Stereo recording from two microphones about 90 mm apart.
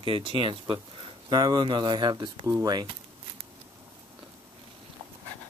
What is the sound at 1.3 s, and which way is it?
Speech, 50° right (ahead or behind).